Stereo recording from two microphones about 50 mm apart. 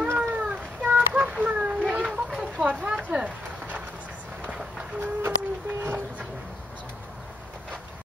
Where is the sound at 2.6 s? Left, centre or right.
Right.